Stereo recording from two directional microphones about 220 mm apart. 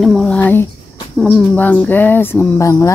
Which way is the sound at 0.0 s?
Centre (ahead or behind).